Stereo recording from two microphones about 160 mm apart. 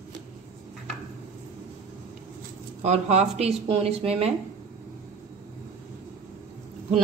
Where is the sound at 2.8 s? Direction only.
45° right (ahead or behind).